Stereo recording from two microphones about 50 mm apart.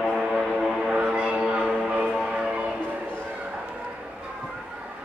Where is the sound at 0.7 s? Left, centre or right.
Centre.